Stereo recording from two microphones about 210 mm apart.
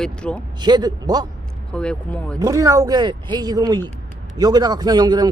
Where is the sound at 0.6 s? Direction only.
20° right (ahead or behind).